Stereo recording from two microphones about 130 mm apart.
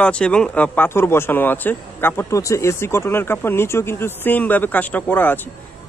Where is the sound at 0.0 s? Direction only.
5° left (ahead or behind).